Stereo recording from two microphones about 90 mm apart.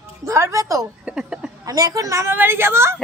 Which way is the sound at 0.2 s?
35° right (ahead or behind).